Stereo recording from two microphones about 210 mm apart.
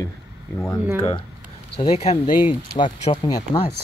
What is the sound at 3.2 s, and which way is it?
Speech, 20° left (ahead or behind).